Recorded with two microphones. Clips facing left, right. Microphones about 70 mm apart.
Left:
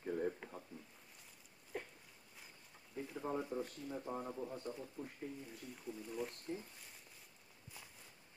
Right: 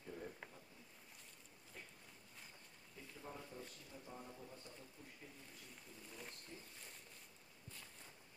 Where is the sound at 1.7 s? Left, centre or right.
Left.